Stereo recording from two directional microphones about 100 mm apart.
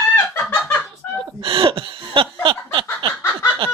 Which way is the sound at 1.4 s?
60° right (ahead or behind).